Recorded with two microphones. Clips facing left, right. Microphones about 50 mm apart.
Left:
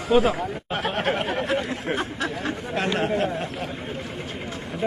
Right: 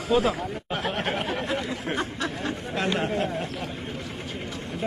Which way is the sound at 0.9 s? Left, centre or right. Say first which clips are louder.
Left 6 dB; left.